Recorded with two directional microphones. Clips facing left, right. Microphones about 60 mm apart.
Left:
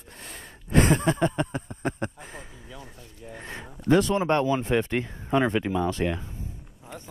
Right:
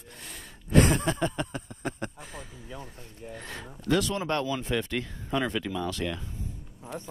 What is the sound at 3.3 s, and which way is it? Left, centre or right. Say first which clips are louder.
Speech: left 3 dB; left.